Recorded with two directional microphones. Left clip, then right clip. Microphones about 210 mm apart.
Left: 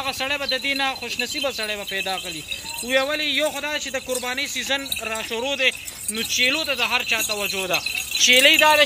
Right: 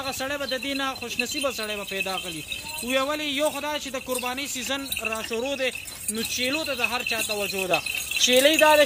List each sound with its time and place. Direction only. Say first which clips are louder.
0.0 s a man's voice: left 4 dB; 45° right (ahead or behind)
5.0 s speech: left 2 dB; 40° right (ahead or behind)